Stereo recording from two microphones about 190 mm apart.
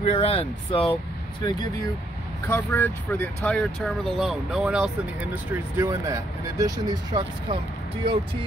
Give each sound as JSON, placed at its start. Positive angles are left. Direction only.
{"t": 0.0, "sound": "speech", "side_deg": 30}
{"t": 2.4, "sound": "speech", "side_deg": 10}